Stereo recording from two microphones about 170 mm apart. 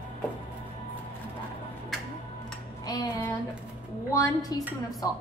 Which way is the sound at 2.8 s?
25° left (ahead or behind).